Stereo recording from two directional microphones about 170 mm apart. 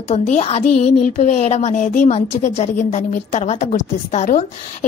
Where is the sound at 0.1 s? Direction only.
40° left (ahead or behind).